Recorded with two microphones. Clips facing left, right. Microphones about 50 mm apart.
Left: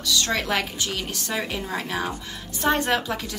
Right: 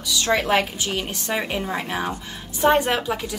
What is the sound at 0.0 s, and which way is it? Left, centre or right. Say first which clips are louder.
A woman's voice: right 3 dB; centre.